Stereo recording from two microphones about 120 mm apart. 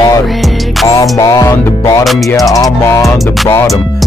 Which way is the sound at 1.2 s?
30° left (ahead or behind).